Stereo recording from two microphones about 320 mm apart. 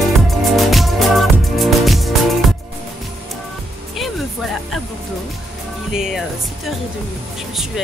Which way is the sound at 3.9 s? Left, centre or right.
Centre.